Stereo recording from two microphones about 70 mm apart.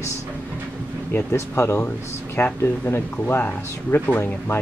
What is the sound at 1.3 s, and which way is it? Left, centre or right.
Speech, left.